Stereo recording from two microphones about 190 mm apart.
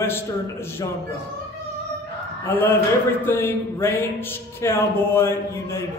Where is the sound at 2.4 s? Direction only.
10° left (ahead or behind).